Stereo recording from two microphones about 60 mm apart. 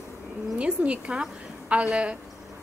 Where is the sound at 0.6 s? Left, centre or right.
Centre.